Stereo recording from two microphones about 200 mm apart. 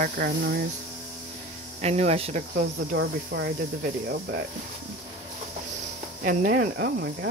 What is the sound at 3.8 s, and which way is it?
Speech, 50° right (ahead or behind).